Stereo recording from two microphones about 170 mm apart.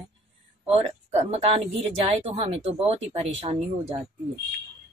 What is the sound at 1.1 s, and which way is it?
Speech, 35° right (ahead or behind).